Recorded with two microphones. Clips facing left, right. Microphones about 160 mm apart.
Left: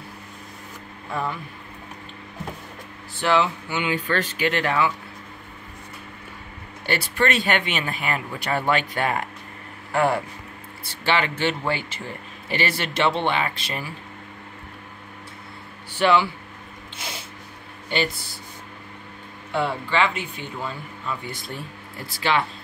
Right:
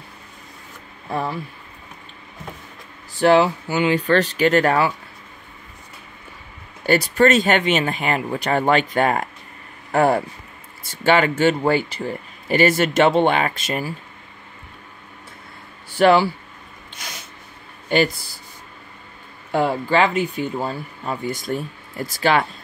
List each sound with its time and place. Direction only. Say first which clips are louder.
1.1 s speech: right 3 dB; 30° right (ahead or behind)
3.2 s speech: right 6 dB; 40° right (ahead or behind)
6.9 s speech: right 7 dB; 40° right (ahead or behind)
15.9 s speech: right 5 dB; 40° right (ahead or behind)
16.9 s sneeze: left 2 dB; 25° left (ahead or behind)
17.8 s speech: right 7 dB; 45° right (ahead or behind)
19.5 s speech: right 5 dB; 40° right (ahead or behind)